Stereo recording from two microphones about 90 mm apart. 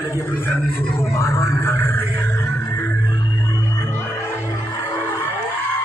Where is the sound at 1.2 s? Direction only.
30° left (ahead or behind).